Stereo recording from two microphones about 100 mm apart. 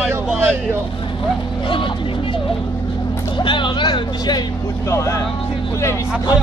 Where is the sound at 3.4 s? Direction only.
55° left (ahead or behind).